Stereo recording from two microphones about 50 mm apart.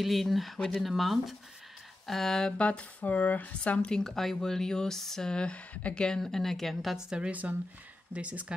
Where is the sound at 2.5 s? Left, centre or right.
Left.